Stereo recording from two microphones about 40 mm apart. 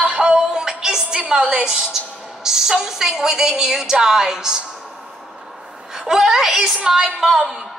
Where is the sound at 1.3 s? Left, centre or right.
Centre.